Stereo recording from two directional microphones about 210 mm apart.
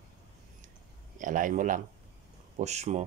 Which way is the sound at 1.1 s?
40° right (ahead or behind).